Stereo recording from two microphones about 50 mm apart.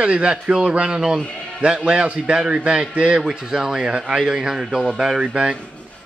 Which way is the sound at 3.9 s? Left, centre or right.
Right.